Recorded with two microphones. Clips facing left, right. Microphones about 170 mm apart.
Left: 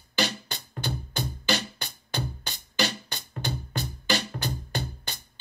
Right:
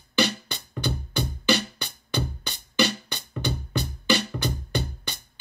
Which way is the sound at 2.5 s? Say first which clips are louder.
Right 5 dB; 65° right (ahead or behind).